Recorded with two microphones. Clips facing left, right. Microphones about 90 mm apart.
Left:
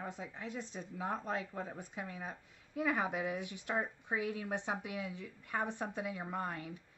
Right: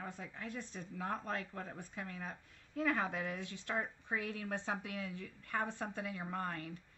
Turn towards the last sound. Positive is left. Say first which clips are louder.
# left 1 dB
turn(degrees=15)  # may be behind; listen again after turning